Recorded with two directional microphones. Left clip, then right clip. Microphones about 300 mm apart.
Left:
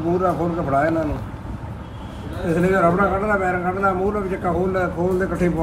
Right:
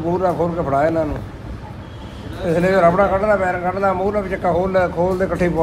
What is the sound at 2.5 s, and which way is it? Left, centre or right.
A man's voice, right.